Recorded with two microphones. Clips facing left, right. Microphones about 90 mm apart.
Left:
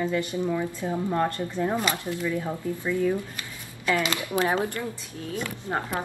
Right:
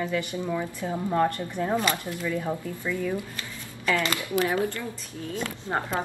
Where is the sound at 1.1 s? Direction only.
15° right (ahead or behind).